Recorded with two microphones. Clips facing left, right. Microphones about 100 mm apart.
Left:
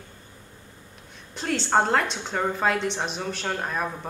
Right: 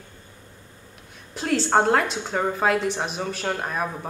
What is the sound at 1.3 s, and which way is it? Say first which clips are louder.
A woman's voice: right 2 dB; 5° right (ahead or behind).